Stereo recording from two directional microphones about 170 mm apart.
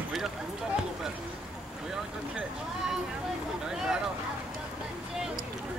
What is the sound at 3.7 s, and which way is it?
Speech, 5° right (ahead or behind).